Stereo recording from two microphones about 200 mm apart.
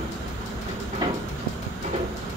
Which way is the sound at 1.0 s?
20° right (ahead or behind).